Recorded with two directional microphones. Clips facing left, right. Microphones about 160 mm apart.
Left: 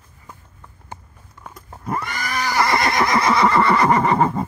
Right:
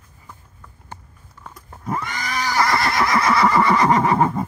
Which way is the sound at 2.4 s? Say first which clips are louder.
Left 1 dB; 10° left (ahead or behind).